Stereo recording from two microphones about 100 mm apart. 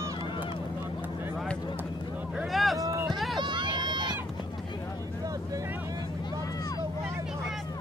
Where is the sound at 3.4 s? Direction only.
50° right (ahead or behind).